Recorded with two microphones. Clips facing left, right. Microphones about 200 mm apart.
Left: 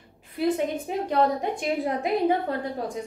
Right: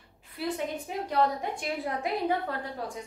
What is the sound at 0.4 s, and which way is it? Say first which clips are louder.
A woman's voice: left 7 dB; 20° left (ahead or behind).